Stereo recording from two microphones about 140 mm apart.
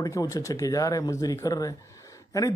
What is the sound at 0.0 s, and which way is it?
Speech, 25° left (ahead or behind).